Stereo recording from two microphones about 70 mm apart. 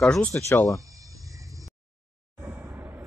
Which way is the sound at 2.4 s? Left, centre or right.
Right.